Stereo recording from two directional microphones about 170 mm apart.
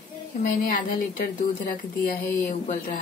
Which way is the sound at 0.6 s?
55° left (ahead or behind).